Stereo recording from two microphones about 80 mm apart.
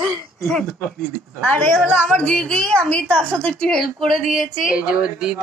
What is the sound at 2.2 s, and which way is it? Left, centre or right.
A woman's voice, centre.